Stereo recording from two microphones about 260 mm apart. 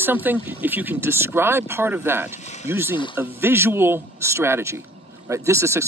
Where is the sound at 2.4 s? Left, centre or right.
Left.